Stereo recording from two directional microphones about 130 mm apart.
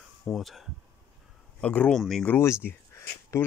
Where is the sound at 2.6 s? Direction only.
20° left (ahead or behind).